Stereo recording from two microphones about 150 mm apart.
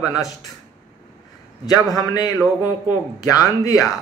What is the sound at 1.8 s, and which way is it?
A man's voice, 25° left (ahead or behind).